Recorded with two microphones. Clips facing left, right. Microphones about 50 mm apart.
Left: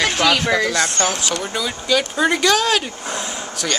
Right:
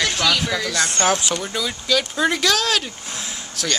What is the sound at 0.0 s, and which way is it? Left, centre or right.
Speech, left.